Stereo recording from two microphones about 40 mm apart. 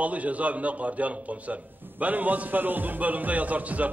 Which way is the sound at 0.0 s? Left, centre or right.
Right.